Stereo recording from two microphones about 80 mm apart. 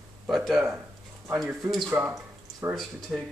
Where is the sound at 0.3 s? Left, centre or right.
Centre.